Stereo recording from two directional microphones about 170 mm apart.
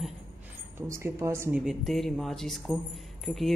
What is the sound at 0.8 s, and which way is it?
Speech, 15° right (ahead or behind).